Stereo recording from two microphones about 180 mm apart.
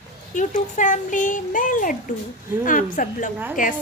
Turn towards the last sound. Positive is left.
turn(degrees=50)  # may be behind; listen again after turning